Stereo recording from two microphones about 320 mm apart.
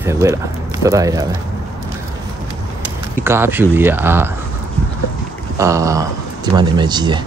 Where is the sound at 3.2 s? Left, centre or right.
Centre.